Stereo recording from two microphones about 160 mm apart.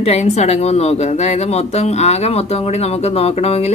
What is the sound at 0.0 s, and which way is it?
Speech, 45° left (ahead or behind).